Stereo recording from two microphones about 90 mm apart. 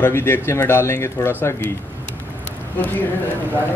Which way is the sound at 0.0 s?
25° left (ahead or behind).